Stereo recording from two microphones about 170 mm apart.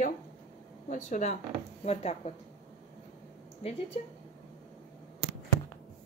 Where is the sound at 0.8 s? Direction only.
45° left (ahead or behind).